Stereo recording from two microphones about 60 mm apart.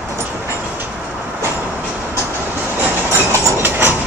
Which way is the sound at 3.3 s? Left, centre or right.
Right.